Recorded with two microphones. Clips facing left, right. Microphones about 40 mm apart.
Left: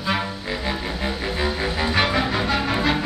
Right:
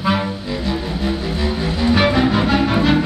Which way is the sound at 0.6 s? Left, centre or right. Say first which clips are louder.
Right 5 dB; centre.